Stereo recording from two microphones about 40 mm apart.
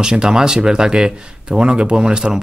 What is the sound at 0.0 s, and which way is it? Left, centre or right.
Speech, centre.